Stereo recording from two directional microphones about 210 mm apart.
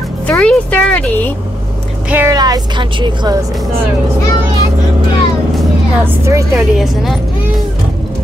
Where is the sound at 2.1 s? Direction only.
10° right (ahead or behind).